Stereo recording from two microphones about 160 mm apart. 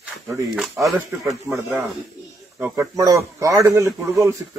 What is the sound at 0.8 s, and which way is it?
Speech, 10° right (ahead or behind).